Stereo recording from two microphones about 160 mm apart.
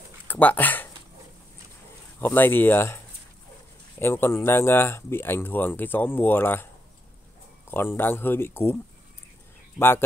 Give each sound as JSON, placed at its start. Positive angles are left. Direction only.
{"t": 0.3, "sound": "speech", "side_deg": 10}
{"t": 2.1, "sound": "speech", "side_deg": 10}
{"t": 4.0, "sound": "speech", "side_deg": 15}
{"t": 7.7, "sound": "speech", "side_deg": 15}
{"t": 9.8, "sound": "speech", "side_deg": 15}